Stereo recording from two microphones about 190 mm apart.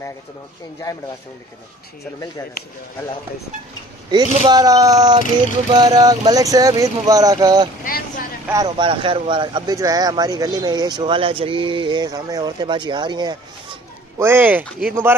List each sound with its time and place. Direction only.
4.5 s speech: 20° right (ahead or behind)
7.8 s vehicle: 50° left (ahead or behind)
8.5 s speech: 20° right (ahead or behind)
14.1 s speech: 10° right (ahead or behind)